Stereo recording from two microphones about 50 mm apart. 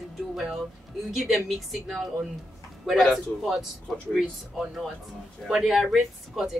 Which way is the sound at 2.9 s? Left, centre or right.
Centre.